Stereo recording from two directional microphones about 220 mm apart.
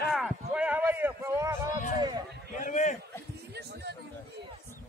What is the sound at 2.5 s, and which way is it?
Speech, 35° left (ahead or behind).